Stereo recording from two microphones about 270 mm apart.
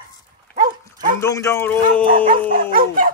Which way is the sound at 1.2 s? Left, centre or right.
Centre.